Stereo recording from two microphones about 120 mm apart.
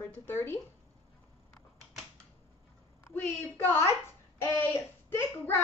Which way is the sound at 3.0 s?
20° left (ahead or behind).